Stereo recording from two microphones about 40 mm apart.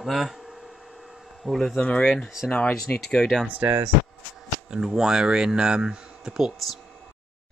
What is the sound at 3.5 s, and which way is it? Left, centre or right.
Speech, right.